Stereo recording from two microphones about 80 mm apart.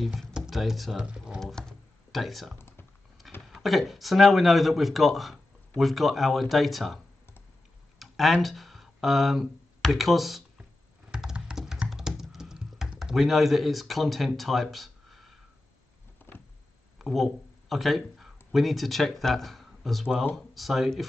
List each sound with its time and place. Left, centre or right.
0.0 s speech: centre
1.4 s a sound: centre
3.4 s speech: centre
8.0 s speech: centre
11.1 s computer keyboard: centre
16.3 s a sound: left
17.0 s speech: centre